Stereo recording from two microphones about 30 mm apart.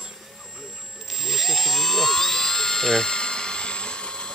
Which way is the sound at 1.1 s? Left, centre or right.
Centre.